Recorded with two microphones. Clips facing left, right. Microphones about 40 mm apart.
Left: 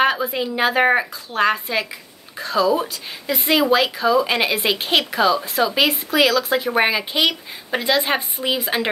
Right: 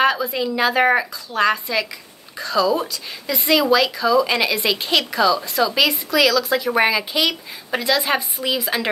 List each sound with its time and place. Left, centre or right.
0.0 s a woman's voice: left
8.2 s a woman's voice: left